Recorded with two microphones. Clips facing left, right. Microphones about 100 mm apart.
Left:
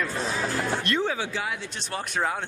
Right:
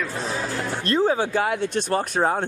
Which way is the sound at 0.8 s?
35° right (ahead or behind).